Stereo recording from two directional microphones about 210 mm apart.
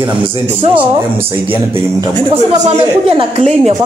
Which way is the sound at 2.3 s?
30° right (ahead or behind).